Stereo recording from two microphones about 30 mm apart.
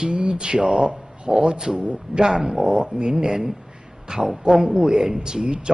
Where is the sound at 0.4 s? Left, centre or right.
Right.